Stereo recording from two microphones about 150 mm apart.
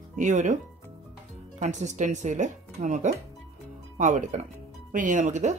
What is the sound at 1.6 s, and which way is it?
Speech, 55° right (ahead or behind).